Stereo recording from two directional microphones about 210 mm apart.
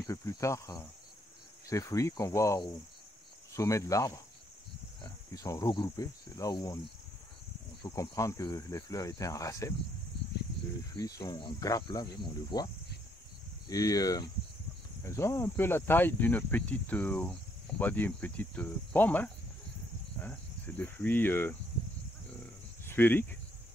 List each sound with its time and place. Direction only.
0.0 s cricket: 15° left (ahead or behind)
7.8 s cricket: 15° left (ahead or behind)
11.0 s cricket: 15° left (ahead or behind)
12.5 s speech: 20° left (ahead or behind)
13.7 s cricket: 15° left (ahead or behind)
22.8 s speech: 10° left (ahead or behind)